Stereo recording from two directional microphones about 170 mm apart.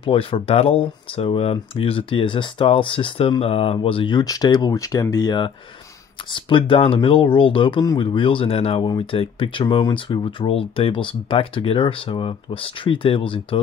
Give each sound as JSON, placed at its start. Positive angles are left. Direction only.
{"t": 0.0, "sound": "speech", "side_deg": 35}